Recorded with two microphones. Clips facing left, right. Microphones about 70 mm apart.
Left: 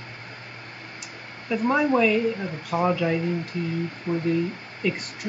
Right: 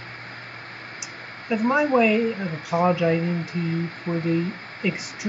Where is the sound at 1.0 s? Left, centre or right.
Centre.